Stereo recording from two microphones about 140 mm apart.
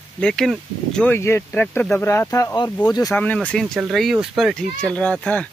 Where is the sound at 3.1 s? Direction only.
10° left (ahead or behind).